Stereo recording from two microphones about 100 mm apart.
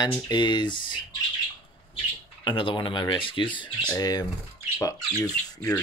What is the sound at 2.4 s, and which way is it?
Speech, 55° left (ahead or behind).